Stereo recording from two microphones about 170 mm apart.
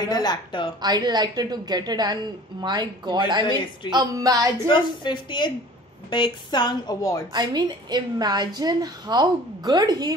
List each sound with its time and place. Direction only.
0.1 s a woman's voice: 25° left (ahead or behind)
0.8 s a woman's voice: 25° right (ahead or behind)
4.6 s a woman's voice: 25° left (ahead or behind)
7.3 s a woman's voice: 25° right (ahead or behind)